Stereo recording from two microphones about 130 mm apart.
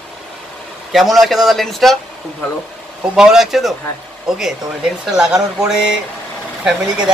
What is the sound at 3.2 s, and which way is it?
Speech, 5° right (ahead or behind).